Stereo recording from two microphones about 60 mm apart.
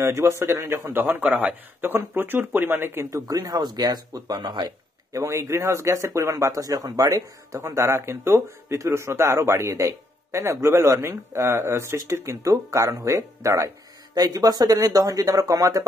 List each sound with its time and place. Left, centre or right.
0.0 s speech: right
3.3 s speech: right
4.6 s speech: right
7.6 s speech: right
12.7 s speech: right
14.1 s speech: right